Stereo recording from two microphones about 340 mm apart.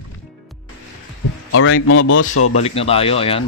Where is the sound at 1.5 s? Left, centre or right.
Left.